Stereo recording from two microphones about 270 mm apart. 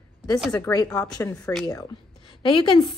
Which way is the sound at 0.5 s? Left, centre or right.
Centre.